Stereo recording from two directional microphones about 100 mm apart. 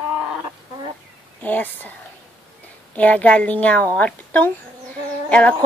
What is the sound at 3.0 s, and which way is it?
A woman's voice, 15° left (ahead or behind).